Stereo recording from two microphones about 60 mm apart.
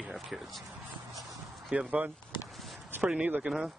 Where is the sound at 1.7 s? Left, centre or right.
Right.